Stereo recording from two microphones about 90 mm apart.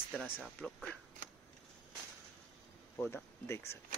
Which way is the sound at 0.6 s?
5° left (ahead or behind).